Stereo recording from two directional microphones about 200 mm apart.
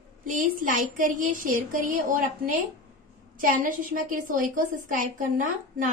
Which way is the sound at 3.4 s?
45° right (ahead or behind).